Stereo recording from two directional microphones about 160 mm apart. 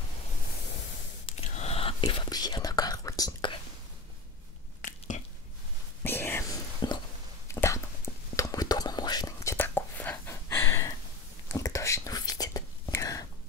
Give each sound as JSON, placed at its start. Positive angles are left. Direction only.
{"t": 1.2, "sound": "whispering", "side_deg": 45}
{"t": 4.8, "sound": "squish", "side_deg": 50}
{"t": 6.0, "sound": "whispering", "side_deg": 15}